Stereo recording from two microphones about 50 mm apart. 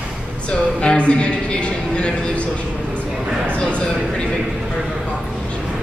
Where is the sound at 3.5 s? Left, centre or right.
Left.